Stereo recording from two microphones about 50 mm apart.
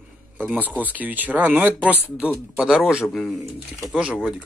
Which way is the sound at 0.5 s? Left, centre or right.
Right.